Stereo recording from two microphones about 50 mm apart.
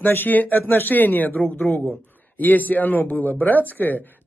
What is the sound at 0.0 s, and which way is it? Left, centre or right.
Speech, left.